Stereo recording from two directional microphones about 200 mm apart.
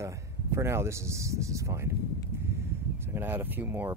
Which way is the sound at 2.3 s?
10° right (ahead or behind).